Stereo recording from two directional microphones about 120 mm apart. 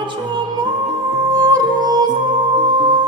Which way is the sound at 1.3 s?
30° right (ahead or behind).